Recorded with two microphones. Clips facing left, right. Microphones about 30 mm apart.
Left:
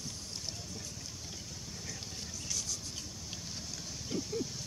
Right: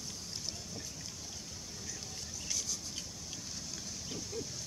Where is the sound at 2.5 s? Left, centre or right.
Centre.